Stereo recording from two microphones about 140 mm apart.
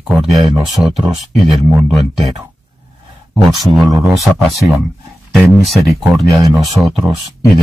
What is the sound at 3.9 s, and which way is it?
Speech, 20° right (ahead or behind).